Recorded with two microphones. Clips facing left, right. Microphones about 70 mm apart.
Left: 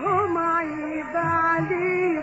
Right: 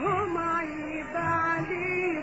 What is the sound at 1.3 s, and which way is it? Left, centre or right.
Music, left.